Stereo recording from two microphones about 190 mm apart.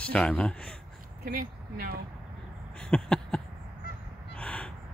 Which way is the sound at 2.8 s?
5° left (ahead or behind).